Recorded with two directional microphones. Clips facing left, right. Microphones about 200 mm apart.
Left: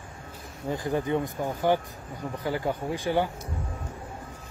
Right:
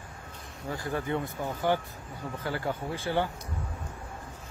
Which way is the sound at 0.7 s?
20° left (ahead or behind).